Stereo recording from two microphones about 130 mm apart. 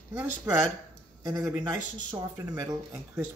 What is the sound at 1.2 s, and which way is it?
Speech, 25° right (ahead or behind).